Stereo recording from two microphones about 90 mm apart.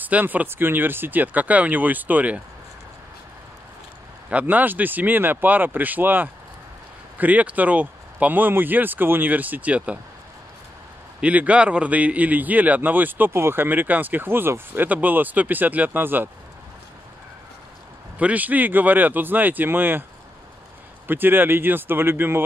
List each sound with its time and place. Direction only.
0.0 s a man's voice: 20° right (ahead or behind)
4.3 s a man's voice: 15° right (ahead or behind)
11.1 s a man's voice: 15° right (ahead or behind)
18.2 s a man's voice: 15° right (ahead or behind)
21.1 s a man's voice: 20° right (ahead or behind)